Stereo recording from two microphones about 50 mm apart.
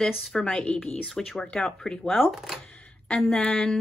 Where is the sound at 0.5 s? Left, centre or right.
Left.